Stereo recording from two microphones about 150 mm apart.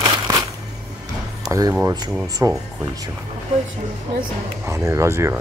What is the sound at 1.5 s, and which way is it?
Speech, 20° right (ahead or behind).